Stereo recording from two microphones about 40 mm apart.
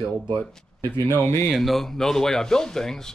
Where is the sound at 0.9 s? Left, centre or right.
Left.